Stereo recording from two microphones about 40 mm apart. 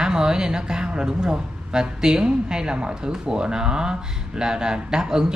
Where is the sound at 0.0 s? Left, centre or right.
Centre.